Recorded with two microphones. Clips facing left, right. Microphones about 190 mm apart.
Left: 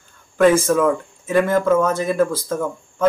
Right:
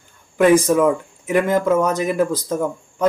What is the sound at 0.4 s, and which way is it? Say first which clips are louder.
Speech: right 1 dB; 15° right (ahead or behind).